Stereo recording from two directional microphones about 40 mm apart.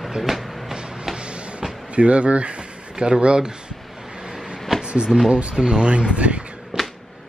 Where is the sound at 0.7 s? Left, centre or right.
Centre.